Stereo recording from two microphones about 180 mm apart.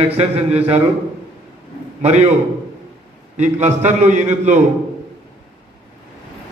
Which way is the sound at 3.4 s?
40° right (ahead or behind).